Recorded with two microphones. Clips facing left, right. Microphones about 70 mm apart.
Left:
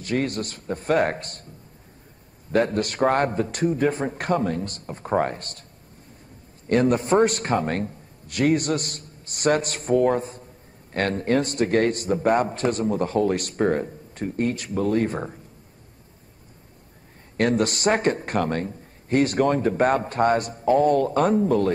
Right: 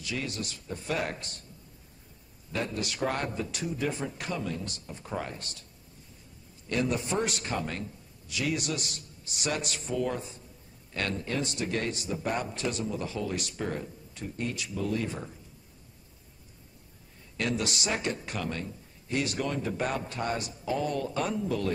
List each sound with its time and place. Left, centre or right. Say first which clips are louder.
0.0 s a man's voice: left 10 dB; left
2.5 s a man's voice: left 11 dB; left
6.7 s a man's voice: left 10 dB; left
17.4 s a man's voice: left 10 dB; left